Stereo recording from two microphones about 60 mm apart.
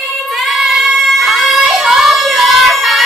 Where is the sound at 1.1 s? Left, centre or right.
Centre.